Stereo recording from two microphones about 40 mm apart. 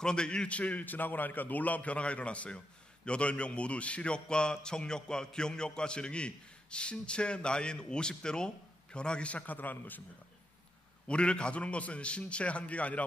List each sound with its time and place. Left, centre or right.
0.0 s a man's voice: left
9.5 s a man's voice: left
11.1 s a man's voice: left